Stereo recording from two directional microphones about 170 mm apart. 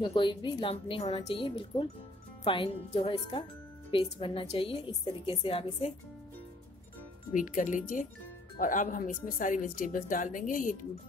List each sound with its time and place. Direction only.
0.0 s a woman's voice: 30° left (ahead or behind)
7.3 s speech: 50° left (ahead or behind)